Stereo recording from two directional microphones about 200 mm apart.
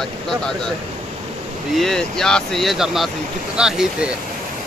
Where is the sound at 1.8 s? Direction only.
Centre (ahead or behind).